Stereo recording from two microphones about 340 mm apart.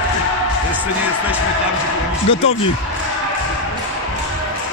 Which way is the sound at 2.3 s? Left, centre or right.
Centre.